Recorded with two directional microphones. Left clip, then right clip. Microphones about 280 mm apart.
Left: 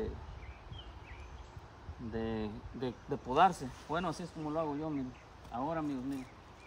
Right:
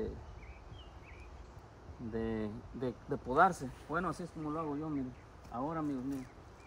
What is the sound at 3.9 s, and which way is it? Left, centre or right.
Speech, left.